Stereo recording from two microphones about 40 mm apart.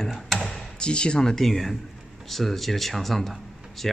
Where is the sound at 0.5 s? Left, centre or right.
Centre.